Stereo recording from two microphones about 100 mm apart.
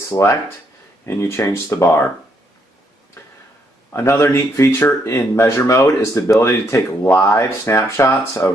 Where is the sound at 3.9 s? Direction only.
25° left (ahead or behind).